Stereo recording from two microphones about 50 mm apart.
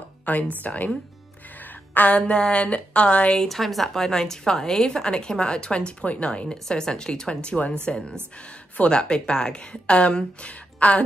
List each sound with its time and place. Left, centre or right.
0.2 s a sound: left
0.7 s speech: left
2.1 s speech: left
3.3 s a woman's voice: centre; by 11.0 s left